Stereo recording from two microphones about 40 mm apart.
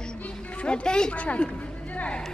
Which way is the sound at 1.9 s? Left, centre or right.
Left.